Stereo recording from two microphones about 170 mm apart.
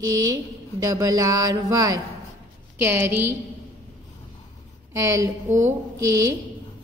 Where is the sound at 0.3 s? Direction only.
20° right (ahead or behind).